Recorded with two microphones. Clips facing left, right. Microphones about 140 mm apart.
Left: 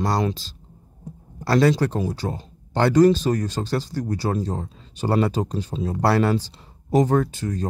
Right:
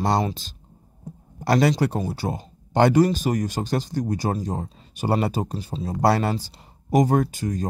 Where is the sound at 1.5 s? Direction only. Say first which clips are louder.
Left 1 dB; 15° right (ahead or behind).